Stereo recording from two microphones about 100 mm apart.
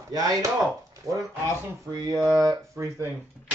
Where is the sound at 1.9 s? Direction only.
35° right (ahead or behind).